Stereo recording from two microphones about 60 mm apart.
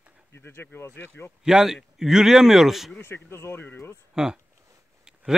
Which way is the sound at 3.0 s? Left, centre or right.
Left.